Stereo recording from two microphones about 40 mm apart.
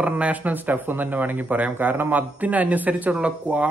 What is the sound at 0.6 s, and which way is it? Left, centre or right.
A man's voice, right.